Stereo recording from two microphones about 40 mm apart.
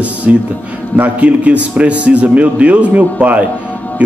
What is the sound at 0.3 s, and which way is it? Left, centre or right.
A man's voice, right.